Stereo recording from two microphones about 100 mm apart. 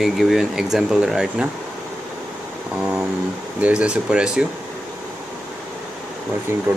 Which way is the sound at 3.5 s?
15° right (ahead or behind).